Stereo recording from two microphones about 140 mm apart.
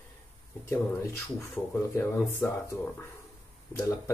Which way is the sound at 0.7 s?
20° left (ahead or behind).